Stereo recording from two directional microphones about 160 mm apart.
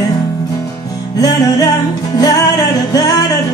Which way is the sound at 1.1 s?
25° left (ahead or behind).